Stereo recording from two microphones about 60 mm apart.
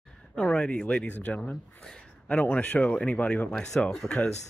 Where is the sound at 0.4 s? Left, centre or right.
Centre.